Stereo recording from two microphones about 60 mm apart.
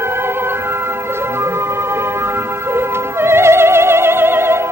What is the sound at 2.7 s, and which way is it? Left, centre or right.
Opera, right.